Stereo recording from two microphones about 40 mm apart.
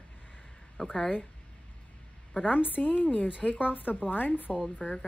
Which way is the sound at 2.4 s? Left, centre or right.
Left.